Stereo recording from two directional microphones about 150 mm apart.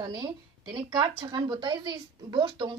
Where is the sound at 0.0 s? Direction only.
30° right (ahead or behind).